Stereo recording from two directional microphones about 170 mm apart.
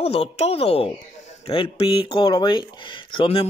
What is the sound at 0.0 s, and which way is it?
Speech, 35° left (ahead or behind).